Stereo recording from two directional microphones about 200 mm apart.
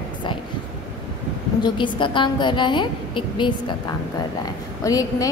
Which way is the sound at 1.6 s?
25° left (ahead or behind).